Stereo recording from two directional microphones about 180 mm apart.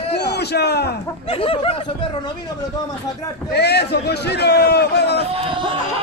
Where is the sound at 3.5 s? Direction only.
65° left (ahead or behind).